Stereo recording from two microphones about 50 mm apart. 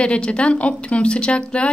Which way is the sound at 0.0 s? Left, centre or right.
Centre.